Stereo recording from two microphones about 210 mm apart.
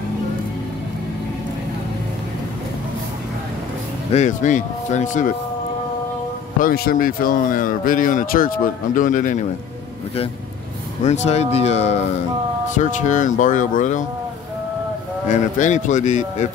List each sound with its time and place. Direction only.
4.1 s speech: 35° left (ahead or behind)
6.6 s speech: 45° left (ahead or behind)
11.1 s speech: 30° left (ahead or behind)
15.2 s speech: 35° left (ahead or behind)